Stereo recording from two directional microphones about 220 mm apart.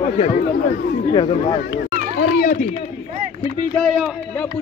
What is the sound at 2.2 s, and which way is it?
Speech, 40° left (ahead or behind).